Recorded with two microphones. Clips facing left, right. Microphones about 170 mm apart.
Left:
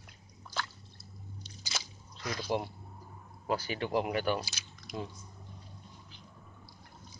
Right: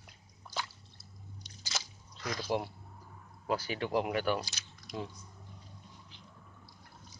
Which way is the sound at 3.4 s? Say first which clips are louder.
Even; centre (ahead or behind).